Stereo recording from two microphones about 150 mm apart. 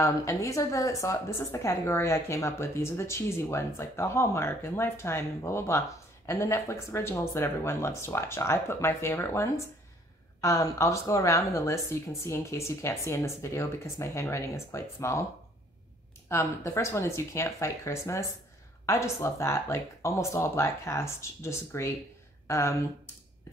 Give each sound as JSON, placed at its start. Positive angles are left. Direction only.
{"t": 0.0, "sound": "a woman's voice", "side_deg": 20}
{"t": 16.3, "sound": "a woman's voice", "side_deg": 15}